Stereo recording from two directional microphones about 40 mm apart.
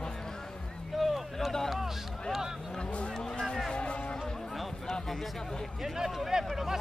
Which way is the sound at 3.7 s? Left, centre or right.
Left.